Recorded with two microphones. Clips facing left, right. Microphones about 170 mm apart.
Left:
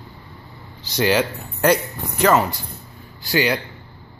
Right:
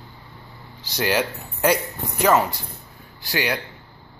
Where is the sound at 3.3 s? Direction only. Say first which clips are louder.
Left 5 dB; centre (ahead or behind).